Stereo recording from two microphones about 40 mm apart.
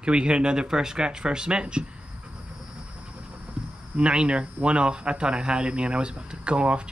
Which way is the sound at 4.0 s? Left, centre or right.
Right.